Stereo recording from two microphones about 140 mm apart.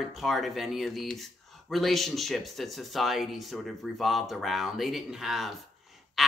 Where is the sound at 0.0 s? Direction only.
Centre (ahead or behind).